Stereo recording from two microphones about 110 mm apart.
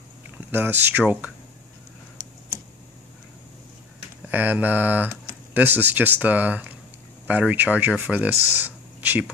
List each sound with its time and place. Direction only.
0.4 s speech: 20° right (ahead or behind)
4.3 s speech: 15° right (ahead or behind)